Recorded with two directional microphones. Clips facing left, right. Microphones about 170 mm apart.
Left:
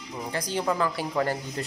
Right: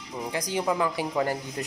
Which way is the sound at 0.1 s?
15° right (ahead or behind).